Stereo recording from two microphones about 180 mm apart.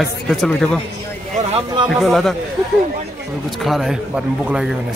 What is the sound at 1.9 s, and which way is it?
Speech, centre (ahead or behind).